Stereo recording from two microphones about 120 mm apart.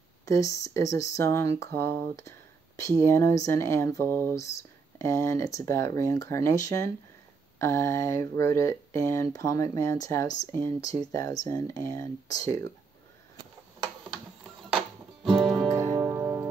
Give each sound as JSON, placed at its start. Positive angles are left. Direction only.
{"t": 0.2, "sound": "speech", "side_deg": 25}
{"t": 15.2, "sound": "music", "side_deg": 0}
{"t": 15.7, "sound": "music", "side_deg": -25}